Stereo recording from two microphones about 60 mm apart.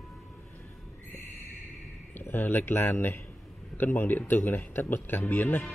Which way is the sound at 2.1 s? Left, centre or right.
Left.